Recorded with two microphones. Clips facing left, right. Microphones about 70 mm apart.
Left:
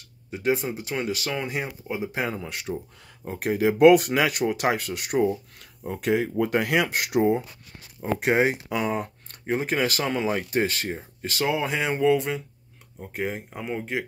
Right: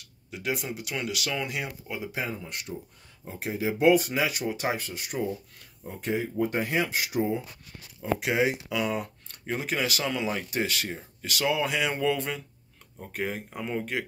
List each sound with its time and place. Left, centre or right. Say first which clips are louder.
0.3 s speech: left 7 dB; left
2.1 s speech: left 4 dB; left
3.3 s speech: left 7 dB; left
5.9 s speech: left 6 dB; left
8.0 s speech: left 4 dB; left; by 14.0 s centre